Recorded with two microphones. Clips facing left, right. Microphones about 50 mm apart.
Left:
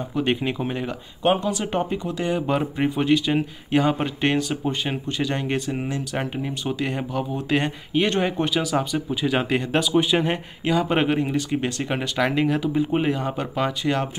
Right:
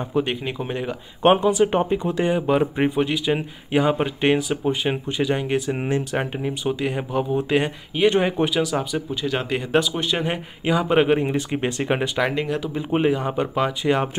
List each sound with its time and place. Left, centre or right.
0.2 s speech: centre
1.3 s speech: centre
2.3 s speech: centre
5.7 s speech: right
6.1 s speech: centre
7.1 s speech: centre
7.4 s speech: centre
9.6 s speech: centre
10.6 s speech: centre
12.2 s speech: centre